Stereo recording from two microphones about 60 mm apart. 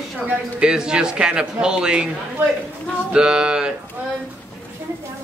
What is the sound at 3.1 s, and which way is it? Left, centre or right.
Speech, centre.